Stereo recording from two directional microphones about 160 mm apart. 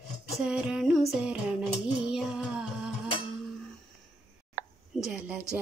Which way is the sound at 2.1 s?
5° right (ahead or behind).